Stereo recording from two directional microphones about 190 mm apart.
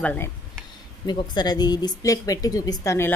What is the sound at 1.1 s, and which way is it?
Speech, 20° left (ahead or behind).